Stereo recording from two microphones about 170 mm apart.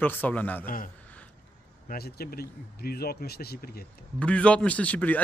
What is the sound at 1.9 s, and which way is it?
Speech, 65° left (ahead or behind).